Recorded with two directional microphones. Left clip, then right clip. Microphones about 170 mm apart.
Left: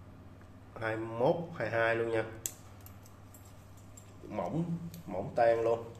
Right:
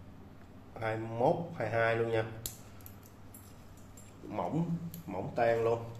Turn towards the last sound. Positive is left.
turn(degrees=5)  # may be behind; listen again after turning